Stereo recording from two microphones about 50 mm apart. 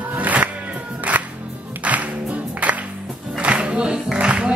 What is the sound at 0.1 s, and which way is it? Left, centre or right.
Music, right.